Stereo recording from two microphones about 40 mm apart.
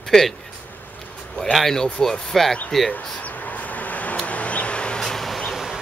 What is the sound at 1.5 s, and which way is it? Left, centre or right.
Speech, centre.